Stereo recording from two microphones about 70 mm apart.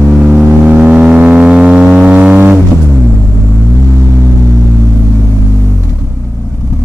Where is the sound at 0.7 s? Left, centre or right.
Centre.